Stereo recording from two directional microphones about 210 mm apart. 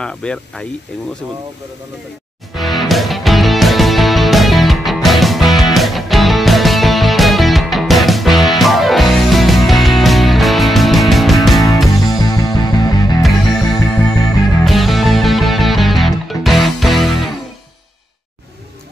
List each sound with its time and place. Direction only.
0.0 s speech: 5° left (ahead or behind)
2.5 s music: centre (ahead or behind)
12.2 s music: 20° left (ahead or behind)
14.6 s music: centre (ahead or behind)